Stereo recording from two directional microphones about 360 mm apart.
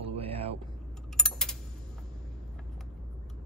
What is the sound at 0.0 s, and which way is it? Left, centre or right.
Vehicle, centre.